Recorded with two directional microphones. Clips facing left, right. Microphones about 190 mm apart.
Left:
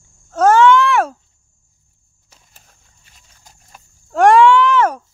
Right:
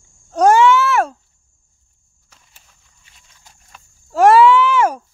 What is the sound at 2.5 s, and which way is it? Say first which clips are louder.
Horse: left 3 dB; 45° left (ahead or behind).